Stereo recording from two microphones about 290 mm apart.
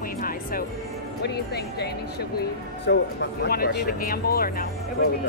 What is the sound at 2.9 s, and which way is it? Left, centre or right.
Speech, left.